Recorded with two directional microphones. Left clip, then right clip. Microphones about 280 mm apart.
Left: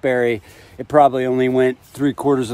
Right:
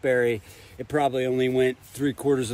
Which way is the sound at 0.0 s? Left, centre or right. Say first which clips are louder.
Left 5 dB; left.